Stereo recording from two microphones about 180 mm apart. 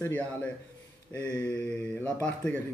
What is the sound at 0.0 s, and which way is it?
Speech, 10° left (ahead or behind).